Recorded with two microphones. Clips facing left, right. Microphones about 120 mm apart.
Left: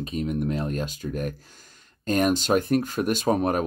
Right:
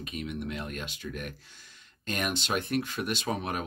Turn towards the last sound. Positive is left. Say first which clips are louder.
# left 9 dB
turn(degrees=45)  # may be behind; listen again after turning